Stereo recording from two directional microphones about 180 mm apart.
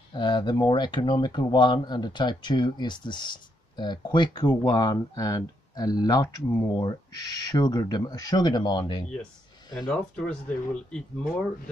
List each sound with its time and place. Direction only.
0.1 s speech: 25° left (ahead or behind)
9.8 s speech: 5° left (ahead or behind)